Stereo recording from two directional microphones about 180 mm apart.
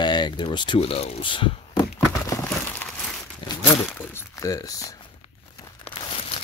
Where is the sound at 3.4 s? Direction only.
30° left (ahead or behind).